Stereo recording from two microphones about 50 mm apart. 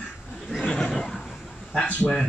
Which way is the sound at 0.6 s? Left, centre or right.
Centre.